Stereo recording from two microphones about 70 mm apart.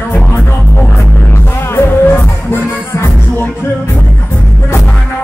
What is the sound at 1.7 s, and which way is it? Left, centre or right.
Music, left.